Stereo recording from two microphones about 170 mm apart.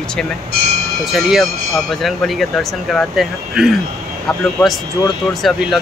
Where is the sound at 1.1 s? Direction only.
Centre (ahead or behind).